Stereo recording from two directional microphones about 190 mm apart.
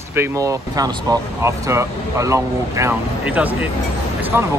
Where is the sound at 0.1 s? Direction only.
15° right (ahead or behind).